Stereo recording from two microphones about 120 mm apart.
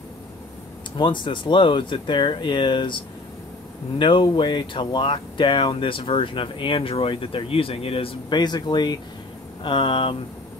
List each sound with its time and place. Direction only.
0.9 s speech: 40° left (ahead or behind)
4.0 s speech: 45° left (ahead or behind)